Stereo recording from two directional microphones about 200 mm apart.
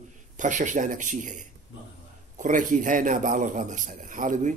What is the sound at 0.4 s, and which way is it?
A man's voice, 40° right (ahead or behind).